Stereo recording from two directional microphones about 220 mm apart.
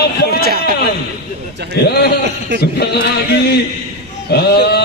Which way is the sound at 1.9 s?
50° left (ahead or behind).